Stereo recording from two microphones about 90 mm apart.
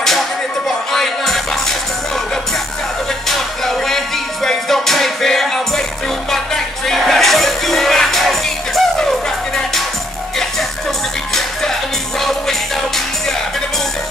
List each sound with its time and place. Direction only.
0.9 s music: 5° left (ahead or behind)
3.3 s music: 5° left (ahead or behind)
12.2 s music: 5° left (ahead or behind)